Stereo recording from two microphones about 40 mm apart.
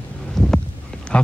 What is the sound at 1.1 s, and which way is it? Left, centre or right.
Speech, left.